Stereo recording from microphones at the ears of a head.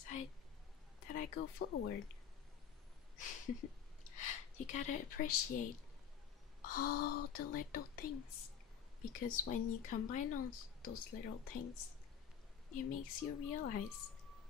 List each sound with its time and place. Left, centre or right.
1.0 s speech: left
3.2 s a woman's voice: left